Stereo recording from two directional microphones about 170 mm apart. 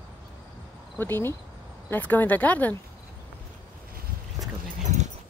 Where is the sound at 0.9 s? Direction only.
10° left (ahead or behind).